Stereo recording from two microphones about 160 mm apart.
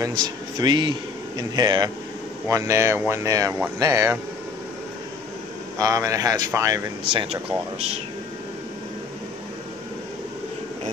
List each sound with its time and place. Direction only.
0.0 s a man's voice: 25° right (ahead or behind)
5.8 s a man's voice: 20° right (ahead or behind)
7.1 s speech: 35° right (ahead or behind)